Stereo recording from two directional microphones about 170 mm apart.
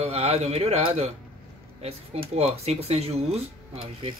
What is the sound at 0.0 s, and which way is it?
Speech, 40° right (ahead or behind).